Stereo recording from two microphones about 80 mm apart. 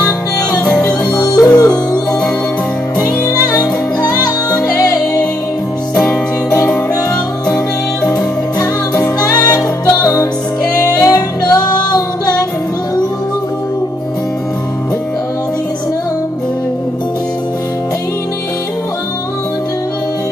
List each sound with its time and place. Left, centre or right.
0.0 s music: left
0.7 s yodeling: left
1.6 s music: left
3.4 s music: left
8.0 s music: left